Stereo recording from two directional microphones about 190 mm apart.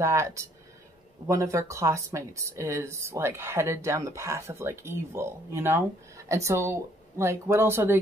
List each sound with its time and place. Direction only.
0.0 s speech: 15° right (ahead or behind)